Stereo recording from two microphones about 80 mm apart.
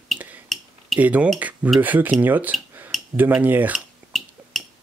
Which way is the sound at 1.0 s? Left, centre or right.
Centre.